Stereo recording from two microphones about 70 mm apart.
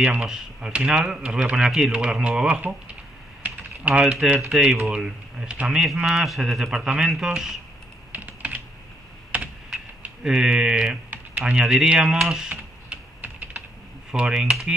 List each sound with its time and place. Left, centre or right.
0.0 s speech: centre
3.4 s typing: right
4.1 s speech: centre
8.1 s typing: right
10.2 s speech: centre
11.1 s typing: right
11.5 s speech: centre
13.2 s typing: right
14.1 s speech: centre